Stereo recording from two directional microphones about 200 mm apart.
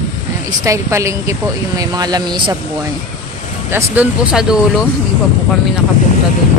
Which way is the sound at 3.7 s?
10° right (ahead or behind).